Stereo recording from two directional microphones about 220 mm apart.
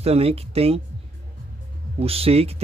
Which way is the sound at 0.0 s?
30° right (ahead or behind).